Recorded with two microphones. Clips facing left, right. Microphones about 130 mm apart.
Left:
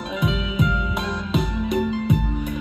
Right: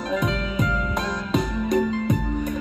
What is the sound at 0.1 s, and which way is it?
Music, 5° left (ahead or behind).